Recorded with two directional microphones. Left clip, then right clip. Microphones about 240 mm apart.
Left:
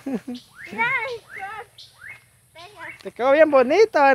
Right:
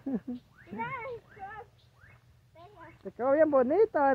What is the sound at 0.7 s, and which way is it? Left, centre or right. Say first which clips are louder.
Speech: left 14 dB; left.